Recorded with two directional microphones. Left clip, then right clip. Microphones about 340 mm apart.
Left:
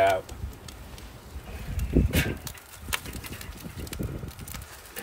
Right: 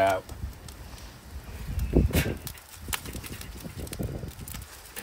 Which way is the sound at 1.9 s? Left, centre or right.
Centre.